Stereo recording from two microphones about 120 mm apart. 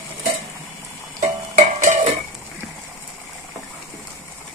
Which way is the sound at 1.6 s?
80° right.